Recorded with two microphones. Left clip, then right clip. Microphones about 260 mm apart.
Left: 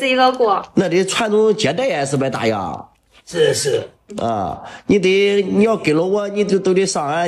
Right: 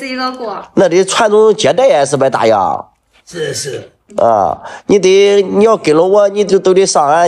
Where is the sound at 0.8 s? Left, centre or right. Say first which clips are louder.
Right 12 dB; centre.